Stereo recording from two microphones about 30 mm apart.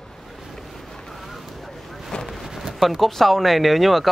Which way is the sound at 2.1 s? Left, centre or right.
Left.